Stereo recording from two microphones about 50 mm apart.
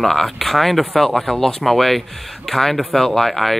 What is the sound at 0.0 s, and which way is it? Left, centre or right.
Speech, centre.